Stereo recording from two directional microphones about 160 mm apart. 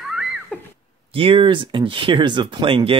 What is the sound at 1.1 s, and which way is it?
Speech, 35° right (ahead or behind).